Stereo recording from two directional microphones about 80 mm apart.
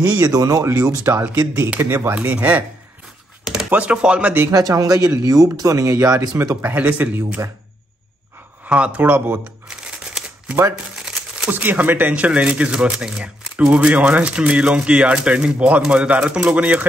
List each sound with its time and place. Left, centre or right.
0.3 s speech: right
0.7 s speech: right
1.8 s speech: right
2.1 s speech: centre
3.7 s speech: centre
4.5 s speech: right
6.6 s speech: right
8.6 s shuffling cards: centre
11.0 s speech: centre